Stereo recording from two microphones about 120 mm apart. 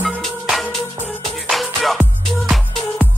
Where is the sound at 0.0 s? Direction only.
Centre (ahead or behind).